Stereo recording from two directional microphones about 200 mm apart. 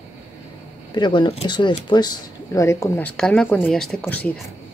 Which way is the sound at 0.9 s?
20° left (ahead or behind).